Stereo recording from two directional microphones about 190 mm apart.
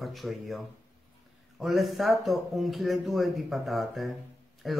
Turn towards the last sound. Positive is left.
turn(degrees=0)  # may be behind; listen again after turning